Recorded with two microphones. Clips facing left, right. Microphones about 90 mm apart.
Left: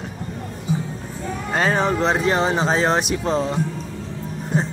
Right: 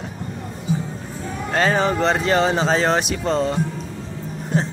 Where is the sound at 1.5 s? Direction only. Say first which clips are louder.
Right 1 dB; 5° left (ahead or behind).